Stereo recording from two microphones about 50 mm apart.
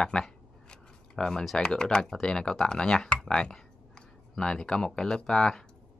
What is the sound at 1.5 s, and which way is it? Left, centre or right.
Speech, centre.